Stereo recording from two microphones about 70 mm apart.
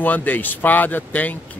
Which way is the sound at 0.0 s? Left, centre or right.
Left.